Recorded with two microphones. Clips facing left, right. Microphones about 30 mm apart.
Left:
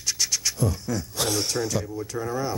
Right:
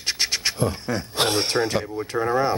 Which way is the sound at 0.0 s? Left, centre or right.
Right.